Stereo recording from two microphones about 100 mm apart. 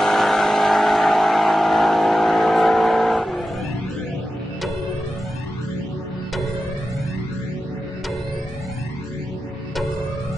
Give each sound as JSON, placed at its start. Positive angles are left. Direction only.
{"t": 0.0, "sound": "vehicle", "side_deg": 0}